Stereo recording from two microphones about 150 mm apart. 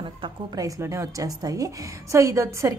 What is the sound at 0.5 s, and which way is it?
A woman's voice, 20° right (ahead or behind).